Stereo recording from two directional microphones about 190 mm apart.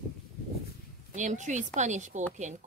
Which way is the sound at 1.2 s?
40° right (ahead or behind).